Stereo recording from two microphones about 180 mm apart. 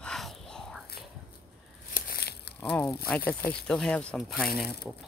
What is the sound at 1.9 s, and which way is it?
Crumpling, 60° left (ahead or behind).